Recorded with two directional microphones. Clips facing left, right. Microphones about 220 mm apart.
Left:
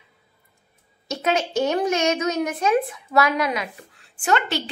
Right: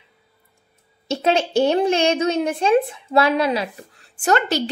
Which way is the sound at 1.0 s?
30° right (ahead or behind).